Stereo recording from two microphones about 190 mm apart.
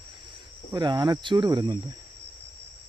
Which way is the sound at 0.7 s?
20° right (ahead or behind).